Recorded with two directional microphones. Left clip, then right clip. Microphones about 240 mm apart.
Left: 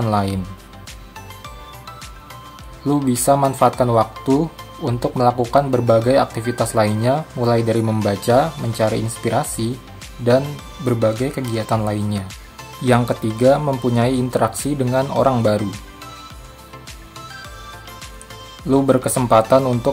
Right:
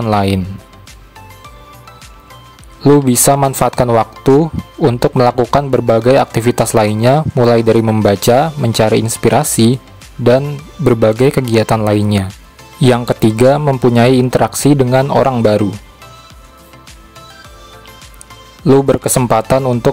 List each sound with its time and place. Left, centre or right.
0.0 s speech: right
2.8 s speech: right
10.9 s speech: right
18.8 s speech: right